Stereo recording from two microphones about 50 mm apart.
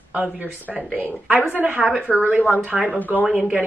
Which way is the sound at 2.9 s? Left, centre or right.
Left.